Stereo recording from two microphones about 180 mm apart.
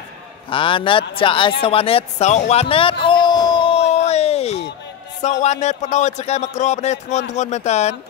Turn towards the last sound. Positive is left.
turn(degrees=40)  # may be behind; listen again after turning